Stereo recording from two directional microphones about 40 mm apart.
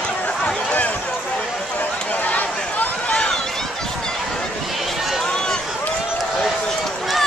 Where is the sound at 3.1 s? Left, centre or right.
Left.